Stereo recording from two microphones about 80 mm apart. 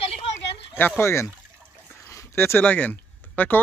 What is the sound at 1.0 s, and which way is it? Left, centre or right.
Speech, left.